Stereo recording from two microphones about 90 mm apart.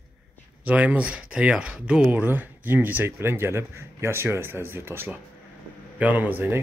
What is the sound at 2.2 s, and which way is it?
A man's voice, 20° right (ahead or behind).